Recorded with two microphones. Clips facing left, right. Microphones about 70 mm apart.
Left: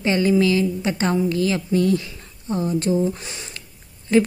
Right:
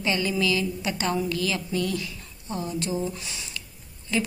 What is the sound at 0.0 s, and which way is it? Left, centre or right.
A woman's voice, left.